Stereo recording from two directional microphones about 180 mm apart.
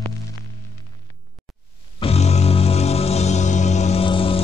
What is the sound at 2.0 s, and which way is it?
Music, 35° left (ahead or behind).